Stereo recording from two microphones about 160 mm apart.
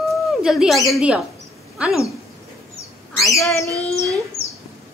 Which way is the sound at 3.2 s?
Centre (ahead or behind).